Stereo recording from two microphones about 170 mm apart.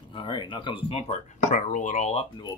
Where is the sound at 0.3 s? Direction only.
30° left (ahead or behind).